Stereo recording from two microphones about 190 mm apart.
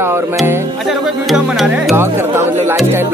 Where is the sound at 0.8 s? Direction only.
Centre (ahead or behind).